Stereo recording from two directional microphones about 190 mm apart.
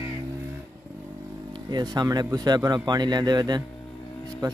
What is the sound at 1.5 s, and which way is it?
Speech, 20° right (ahead or behind).